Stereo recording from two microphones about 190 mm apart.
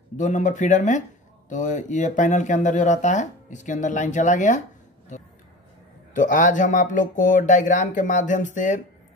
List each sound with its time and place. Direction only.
0.2 s speech: 40° left (ahead or behind)